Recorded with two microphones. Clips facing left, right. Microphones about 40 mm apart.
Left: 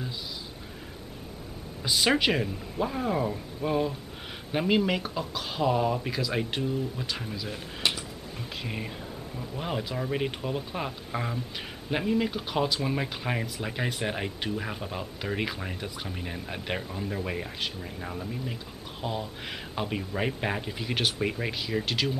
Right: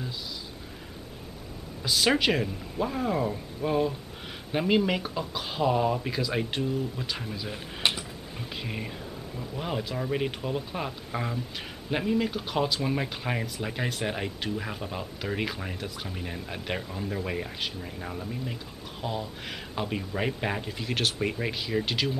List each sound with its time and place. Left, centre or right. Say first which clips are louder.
1.8 s speech: even; centre
7.9 s mechanisms: even; centre
9.6 s speech: even; centre